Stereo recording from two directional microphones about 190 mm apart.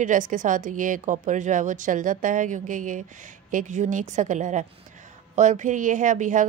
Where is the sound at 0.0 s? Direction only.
40° right (ahead or behind).